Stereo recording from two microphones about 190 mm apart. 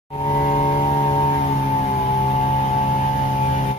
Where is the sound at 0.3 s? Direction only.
40° left (ahead or behind).